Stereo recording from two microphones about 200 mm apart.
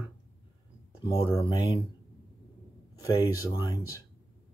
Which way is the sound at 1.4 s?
25° left (ahead or behind).